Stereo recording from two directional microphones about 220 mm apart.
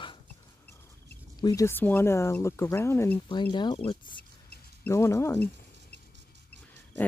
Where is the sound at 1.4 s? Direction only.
15° left (ahead or behind).